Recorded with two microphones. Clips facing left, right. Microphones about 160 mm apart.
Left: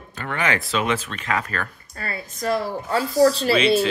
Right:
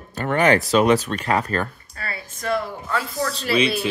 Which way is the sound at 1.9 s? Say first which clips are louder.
Left 2 dB; 40° left (ahead or behind).